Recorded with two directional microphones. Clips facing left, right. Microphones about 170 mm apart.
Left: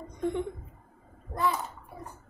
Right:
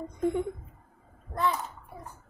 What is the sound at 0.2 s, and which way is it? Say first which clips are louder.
Laughter: right 2 dB; 5° right (ahead or behind).